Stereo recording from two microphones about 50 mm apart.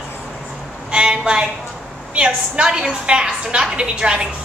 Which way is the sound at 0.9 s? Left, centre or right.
Right.